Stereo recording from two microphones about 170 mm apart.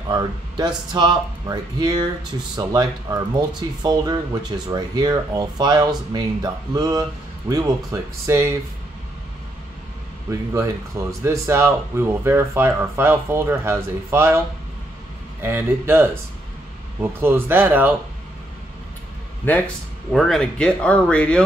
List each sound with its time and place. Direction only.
0.1 s speech: 25° right (ahead or behind)
10.3 s speech: 20° right (ahead or behind)
15.4 s speech: 15° right (ahead or behind)
19.4 s speech: 10° left (ahead or behind)